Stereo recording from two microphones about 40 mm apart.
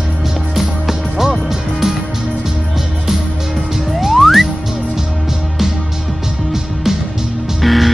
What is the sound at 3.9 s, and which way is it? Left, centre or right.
Music, centre.